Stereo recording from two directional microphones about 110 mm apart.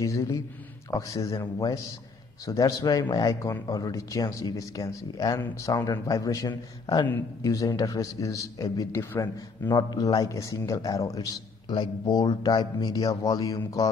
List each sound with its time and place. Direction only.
0.0 s a man's voice: 30° left (ahead or behind)
9.7 s speech: 40° left (ahead or behind)